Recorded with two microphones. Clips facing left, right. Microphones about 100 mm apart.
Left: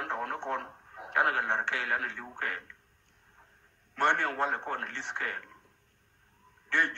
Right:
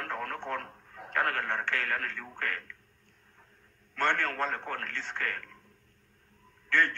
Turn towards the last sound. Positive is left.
turn(degrees=20)  # may be behind; listen again after turning